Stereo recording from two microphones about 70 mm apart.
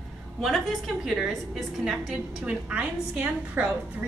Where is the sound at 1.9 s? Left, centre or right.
Centre.